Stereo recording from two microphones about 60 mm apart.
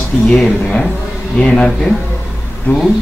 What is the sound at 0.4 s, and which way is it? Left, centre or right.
Speech, centre.